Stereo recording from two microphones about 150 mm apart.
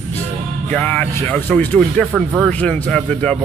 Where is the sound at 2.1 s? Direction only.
5° right (ahead or behind).